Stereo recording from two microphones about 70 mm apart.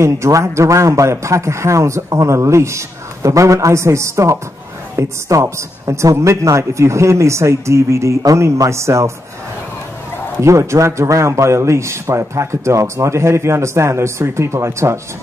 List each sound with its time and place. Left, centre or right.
0.0 s speech: right
10.4 s speech: right